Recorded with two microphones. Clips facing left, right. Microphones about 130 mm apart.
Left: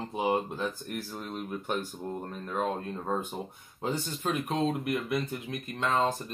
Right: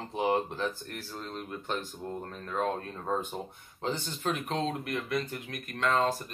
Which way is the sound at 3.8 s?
10° left (ahead or behind).